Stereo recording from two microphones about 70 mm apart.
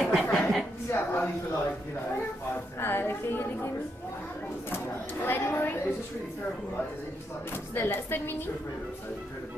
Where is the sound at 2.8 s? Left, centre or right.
Left.